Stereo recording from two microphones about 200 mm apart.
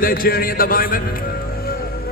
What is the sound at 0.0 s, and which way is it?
A man's voice, 45° left (ahead or behind).